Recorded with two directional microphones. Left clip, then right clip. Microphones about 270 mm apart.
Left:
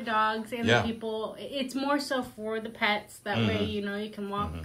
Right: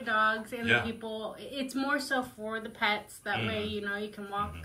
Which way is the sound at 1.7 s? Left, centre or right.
Left.